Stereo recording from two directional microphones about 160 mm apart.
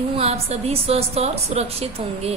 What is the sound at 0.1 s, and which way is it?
A woman's voice, 40° right (ahead or behind).